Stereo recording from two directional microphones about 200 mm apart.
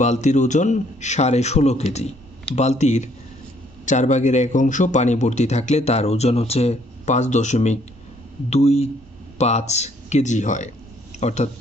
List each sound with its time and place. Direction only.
0.0 s a man's voice: 35° left (ahead or behind)